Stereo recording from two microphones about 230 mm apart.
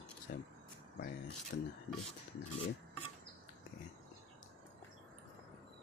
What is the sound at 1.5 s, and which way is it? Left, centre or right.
Speech, left.